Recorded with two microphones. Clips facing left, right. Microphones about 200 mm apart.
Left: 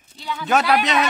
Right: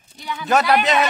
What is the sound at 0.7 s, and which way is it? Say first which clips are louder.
Speech: right 2 dB; centre (ahead or behind).